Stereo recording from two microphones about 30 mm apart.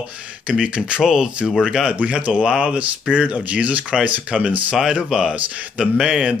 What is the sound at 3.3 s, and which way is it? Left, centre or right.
Speech, right.